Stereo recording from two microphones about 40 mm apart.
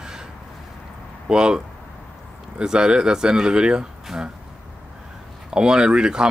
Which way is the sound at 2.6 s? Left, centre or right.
Centre.